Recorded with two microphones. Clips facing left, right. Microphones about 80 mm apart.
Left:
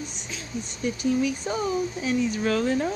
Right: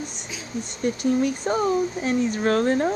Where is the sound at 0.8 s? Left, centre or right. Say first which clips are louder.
Right 3 dB; right.